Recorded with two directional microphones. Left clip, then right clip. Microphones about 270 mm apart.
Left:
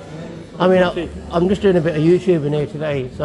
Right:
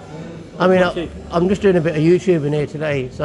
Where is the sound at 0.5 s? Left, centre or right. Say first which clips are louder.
Even; centre.